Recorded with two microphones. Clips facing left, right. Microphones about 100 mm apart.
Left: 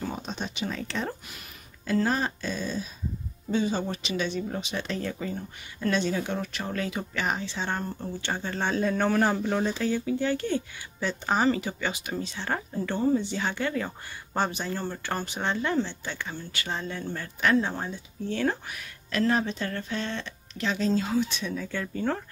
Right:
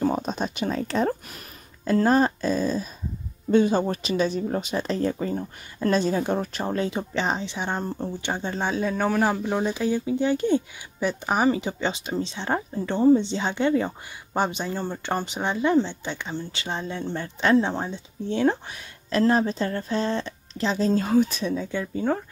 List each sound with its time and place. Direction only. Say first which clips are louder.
0.0 s speech: right 9 dB; 45° right (ahead or behind)
3.5 s speech: right 7 dB; 55° right (ahead or behind); by 8.6 s 20° right (ahead or behind)
8.6 s speech: even; 5° right (ahead or behind); by 21.0 s 35° right (ahead or behind)
21.0 s speech: right 6 dB; 50° right (ahead or behind)
21.5 s speech: right 4 dB; 15° right (ahead or behind)